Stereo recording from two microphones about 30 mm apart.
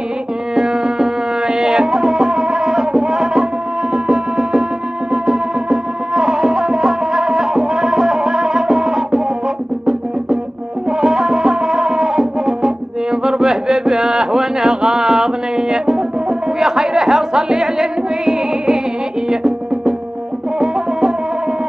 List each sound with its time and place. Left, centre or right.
0.6 s music: right
10.9 s music: right